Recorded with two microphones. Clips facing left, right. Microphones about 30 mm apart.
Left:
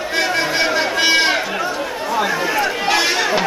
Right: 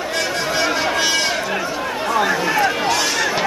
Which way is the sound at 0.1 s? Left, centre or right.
Left.